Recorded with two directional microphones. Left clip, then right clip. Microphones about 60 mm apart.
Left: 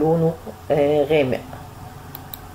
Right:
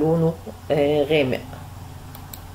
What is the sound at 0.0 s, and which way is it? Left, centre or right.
Speech, centre.